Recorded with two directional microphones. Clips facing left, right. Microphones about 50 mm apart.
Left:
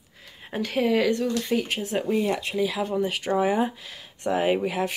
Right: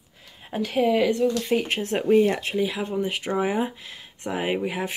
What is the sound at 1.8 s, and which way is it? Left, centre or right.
Speech, right.